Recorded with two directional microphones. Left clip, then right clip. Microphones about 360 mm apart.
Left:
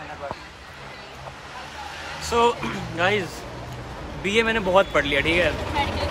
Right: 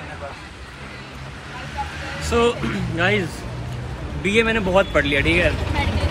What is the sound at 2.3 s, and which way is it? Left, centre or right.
Speech, left.